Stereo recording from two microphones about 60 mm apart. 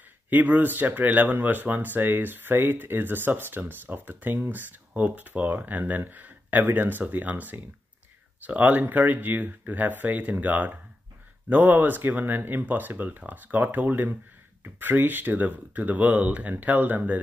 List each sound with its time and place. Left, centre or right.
0.3 s speech: right